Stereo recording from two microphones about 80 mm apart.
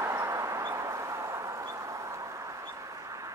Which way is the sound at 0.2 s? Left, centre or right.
Right.